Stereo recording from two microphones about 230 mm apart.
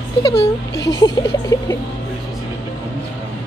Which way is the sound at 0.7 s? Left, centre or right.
Left.